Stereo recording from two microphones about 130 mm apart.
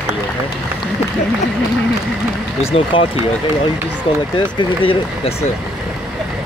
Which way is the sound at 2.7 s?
45° left (ahead or behind).